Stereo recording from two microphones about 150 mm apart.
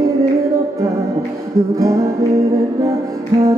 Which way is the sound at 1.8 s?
20° right (ahead or behind).